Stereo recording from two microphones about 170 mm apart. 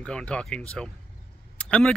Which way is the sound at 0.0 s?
5° left (ahead or behind).